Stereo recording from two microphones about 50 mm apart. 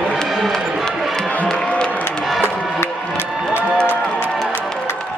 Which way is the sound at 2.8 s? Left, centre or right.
Left.